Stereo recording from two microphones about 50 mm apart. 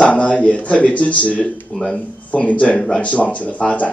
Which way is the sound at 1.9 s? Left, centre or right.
Left.